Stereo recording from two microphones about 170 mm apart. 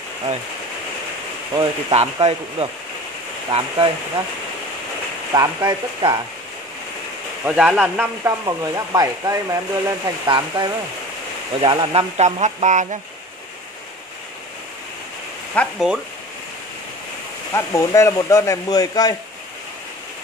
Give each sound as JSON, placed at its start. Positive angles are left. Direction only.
{"t": 1.6, "sound": "speech", "side_deg": -30}
{"t": 5.3, "sound": "speech", "side_deg": -20}
{"t": 7.4, "sound": "speech", "side_deg": -5}
{"t": 12.2, "sound": "speech", "side_deg": -45}
{"t": 15.5, "sound": "speech", "side_deg": 5}
{"t": 17.6, "sound": "speech", "side_deg": 15}